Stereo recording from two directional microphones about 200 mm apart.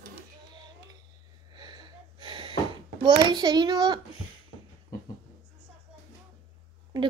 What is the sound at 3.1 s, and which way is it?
Child singing, 20° right (ahead or behind).